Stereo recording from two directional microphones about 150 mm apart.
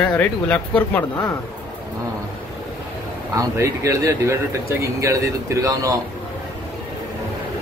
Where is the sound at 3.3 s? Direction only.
20° right (ahead or behind).